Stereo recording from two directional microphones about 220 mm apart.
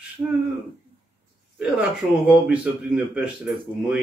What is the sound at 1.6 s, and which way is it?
Speech, 5° right (ahead or behind).